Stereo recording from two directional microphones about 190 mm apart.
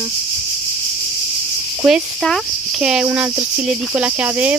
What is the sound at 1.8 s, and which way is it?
Speech, centre (ahead or behind).